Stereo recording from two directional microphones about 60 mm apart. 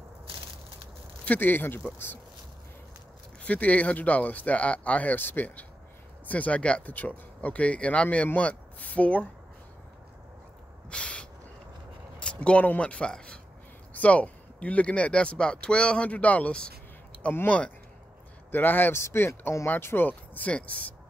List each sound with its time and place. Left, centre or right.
1.2 s speech: left
3.4 s speech: left
10.9 s owl: centre
12.2 s speech: centre; by 18.9 s left
18.9 s speech: left
20.1 s speech: left